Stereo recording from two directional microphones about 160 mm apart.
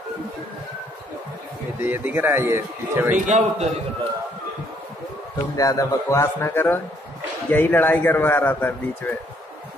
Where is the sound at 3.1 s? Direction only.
50° right (ahead or behind).